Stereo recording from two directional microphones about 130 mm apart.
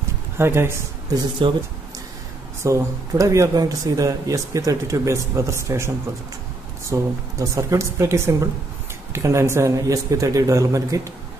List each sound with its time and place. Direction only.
0.4 s speech: 20° right (ahead or behind)
2.6 s speech: 25° right (ahead or behind)
6.9 s speech: 25° right (ahead or behind)